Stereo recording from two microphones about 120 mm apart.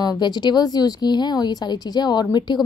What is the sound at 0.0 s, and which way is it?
A woman's voice, 35° left (ahead or behind).